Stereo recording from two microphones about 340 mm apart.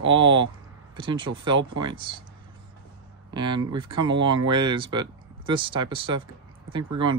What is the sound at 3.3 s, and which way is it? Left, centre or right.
Speech, centre.